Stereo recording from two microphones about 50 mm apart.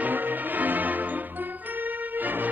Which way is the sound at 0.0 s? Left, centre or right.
Right.